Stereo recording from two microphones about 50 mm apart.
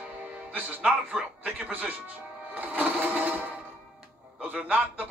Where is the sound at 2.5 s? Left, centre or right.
Right.